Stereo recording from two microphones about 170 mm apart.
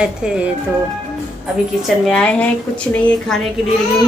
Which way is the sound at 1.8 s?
5° left (ahead or behind).